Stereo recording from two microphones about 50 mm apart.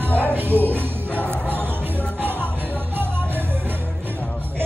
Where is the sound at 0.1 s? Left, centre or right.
Left.